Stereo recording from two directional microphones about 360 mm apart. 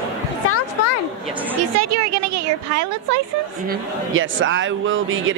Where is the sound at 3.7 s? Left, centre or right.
Right.